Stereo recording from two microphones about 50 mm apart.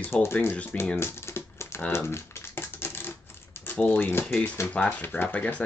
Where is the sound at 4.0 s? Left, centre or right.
Left.